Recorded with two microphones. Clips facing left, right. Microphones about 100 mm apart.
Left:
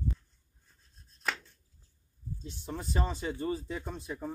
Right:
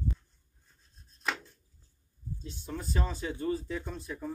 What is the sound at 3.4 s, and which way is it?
Speech, 10° left (ahead or behind).